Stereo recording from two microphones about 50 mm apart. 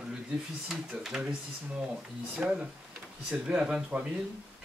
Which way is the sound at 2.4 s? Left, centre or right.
Right.